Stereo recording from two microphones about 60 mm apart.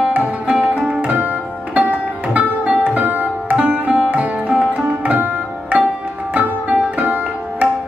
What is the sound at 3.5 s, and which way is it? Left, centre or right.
Sitar, centre.